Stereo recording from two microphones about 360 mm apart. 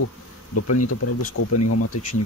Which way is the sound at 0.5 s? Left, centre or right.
Left.